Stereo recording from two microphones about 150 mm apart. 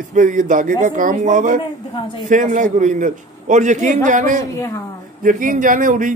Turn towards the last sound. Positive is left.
turn(degrees=-60)  # may be behind; listen again after turning